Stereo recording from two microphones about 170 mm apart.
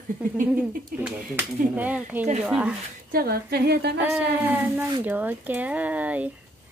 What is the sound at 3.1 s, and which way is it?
Speech, 65° right (ahead or behind).